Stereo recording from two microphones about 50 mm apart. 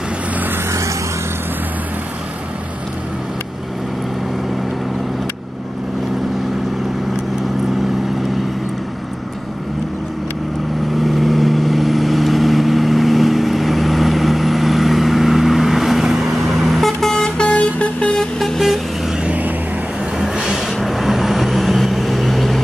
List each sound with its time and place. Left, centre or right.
0.7 s vehicle: right
11.0 s vehicle: centre
17.0 s vehicle: centre
17.4 s vehicle: left
18.4 s vehicle: centre
19.2 s vehicle: right
20.2 s vehicle: centre